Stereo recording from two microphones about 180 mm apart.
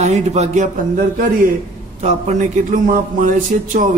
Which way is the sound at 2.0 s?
40° right (ahead or behind).